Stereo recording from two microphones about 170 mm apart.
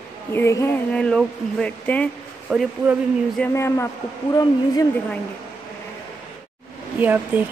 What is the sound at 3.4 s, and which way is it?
Speech, 15° left (ahead or behind).